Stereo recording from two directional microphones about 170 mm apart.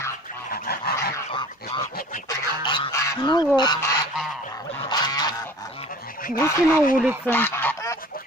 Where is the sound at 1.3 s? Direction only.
30° left (ahead or behind).